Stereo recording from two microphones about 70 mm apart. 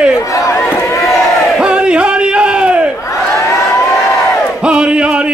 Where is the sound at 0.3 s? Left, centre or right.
Left.